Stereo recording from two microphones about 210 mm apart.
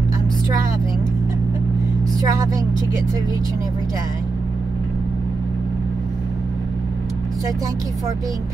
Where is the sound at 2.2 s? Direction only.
15° right (ahead or behind).